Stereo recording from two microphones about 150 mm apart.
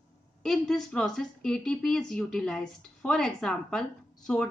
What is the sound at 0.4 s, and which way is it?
A woman's voice, 5° left (ahead or behind).